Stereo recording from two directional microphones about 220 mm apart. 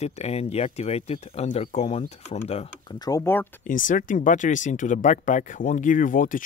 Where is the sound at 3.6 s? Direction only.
35° left (ahead or behind).